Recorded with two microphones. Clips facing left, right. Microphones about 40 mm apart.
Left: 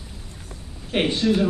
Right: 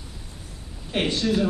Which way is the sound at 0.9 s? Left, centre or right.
Centre.